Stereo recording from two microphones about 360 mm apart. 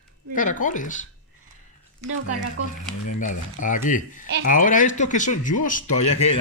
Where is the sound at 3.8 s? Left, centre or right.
Left.